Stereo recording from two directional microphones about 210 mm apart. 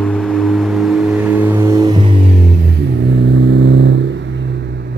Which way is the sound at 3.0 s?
60° right (ahead or behind).